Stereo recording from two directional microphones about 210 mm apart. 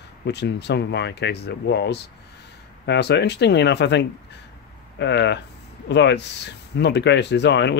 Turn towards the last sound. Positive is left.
turn(degrees=55)  # may be behind; listen again after turning